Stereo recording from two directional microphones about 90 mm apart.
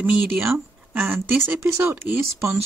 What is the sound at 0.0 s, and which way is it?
Speech, 15° right (ahead or behind).